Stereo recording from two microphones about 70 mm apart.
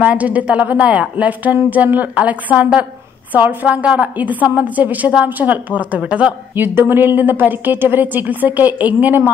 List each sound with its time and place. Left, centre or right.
0.0 s a woman's voice: right
6.5 s a woman's voice: right